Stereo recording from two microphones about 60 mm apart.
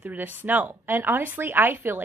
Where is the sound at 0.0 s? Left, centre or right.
Right.